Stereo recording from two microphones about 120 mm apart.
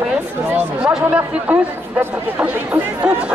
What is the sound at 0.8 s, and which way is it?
Speech, 10° right (ahead or behind).